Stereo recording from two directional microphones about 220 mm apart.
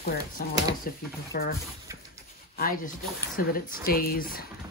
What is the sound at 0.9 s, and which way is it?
Speech, 40° left (ahead or behind).